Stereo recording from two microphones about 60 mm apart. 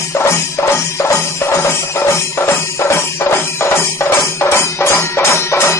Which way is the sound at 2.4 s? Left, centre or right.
Left.